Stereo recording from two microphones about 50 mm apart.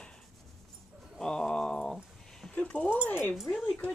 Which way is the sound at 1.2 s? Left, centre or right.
Centre.